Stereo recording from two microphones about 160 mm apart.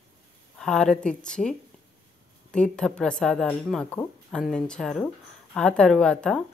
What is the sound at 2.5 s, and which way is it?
Speech, 5° left (ahead or behind).